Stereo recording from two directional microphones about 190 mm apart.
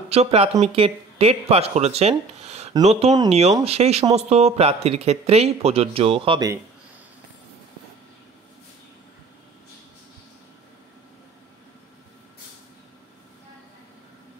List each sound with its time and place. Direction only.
0.1 s speech: 30° right (ahead or behind)
3.1 s speech: 20° right (ahead or behind)
3.6 s speech: 35° right (ahead or behind)